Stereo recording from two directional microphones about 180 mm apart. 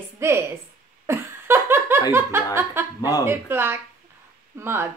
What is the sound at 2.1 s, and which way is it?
Speech, 10° right (ahead or behind).